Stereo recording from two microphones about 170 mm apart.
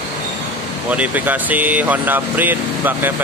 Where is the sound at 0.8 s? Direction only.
10° right (ahead or behind).